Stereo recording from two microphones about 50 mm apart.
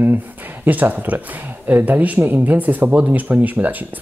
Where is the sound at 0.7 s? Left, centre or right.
Right.